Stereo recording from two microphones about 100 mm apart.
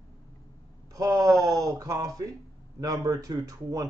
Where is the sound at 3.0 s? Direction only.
35° right (ahead or behind).